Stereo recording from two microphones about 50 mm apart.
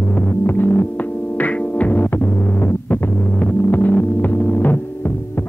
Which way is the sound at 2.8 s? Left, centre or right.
Left.